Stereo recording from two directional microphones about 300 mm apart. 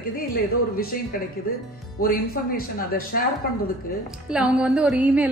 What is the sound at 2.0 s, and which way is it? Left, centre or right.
Speech, left.